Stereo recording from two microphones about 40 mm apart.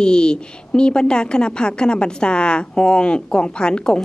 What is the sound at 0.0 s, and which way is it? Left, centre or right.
A woman's voice, left.